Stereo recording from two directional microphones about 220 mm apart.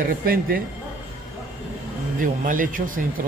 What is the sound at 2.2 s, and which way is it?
Speech, 35° right (ahead or behind).